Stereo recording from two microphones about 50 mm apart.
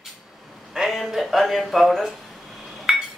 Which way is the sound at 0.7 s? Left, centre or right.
Centre.